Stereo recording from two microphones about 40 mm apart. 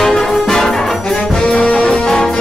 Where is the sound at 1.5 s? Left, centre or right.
Left.